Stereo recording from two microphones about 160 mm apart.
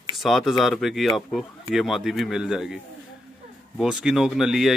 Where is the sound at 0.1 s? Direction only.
Centre (ahead or behind).